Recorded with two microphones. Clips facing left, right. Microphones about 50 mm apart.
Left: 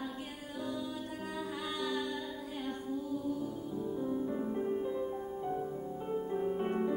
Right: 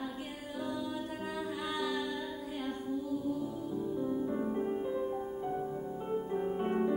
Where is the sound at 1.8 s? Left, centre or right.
Centre.